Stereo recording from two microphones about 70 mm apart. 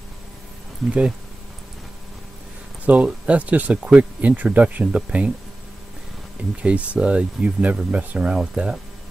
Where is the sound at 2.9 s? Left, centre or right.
Centre.